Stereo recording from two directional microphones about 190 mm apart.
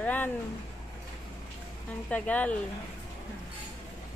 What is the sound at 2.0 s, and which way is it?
Speech, 5° left (ahead or behind).